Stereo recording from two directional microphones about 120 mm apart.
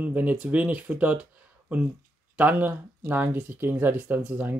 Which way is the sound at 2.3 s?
15° right (ahead or behind).